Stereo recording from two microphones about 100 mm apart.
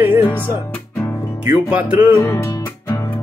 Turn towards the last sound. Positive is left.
turn(degrees=30)  # may be behind; listen again after turning